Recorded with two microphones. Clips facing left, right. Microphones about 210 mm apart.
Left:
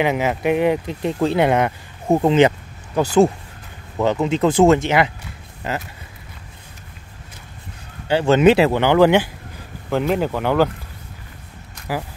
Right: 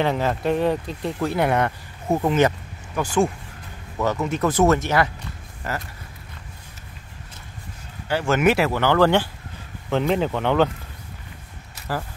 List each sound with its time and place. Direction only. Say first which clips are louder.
0.0 s speech: left 3 dB; 10° left (ahead or behind)
4.0 s speech: left 5 dB; 25° left (ahead or behind)
8.1 s speech: left 6 dB; 25° left (ahead or behind); by 10.7 s 5° left (ahead or behind)
11.9 s speech: left 3 dB; 10° left (ahead or behind)